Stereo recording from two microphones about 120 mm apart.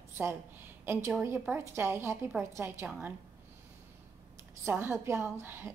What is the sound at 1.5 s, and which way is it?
A woman's voice, 20° right (ahead or behind).